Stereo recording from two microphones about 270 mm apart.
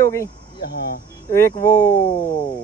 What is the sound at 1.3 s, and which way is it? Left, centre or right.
Speech, centre.